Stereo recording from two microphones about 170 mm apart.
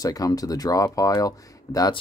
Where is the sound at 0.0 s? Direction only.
20° left (ahead or behind).